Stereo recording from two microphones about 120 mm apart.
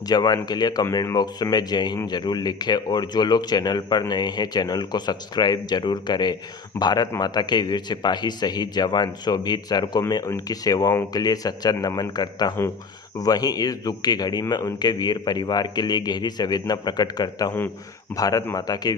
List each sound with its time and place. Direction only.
0.0 s speech: 35° left (ahead or behind)